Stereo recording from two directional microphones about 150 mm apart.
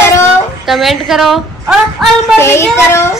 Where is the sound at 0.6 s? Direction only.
Centre (ahead or behind).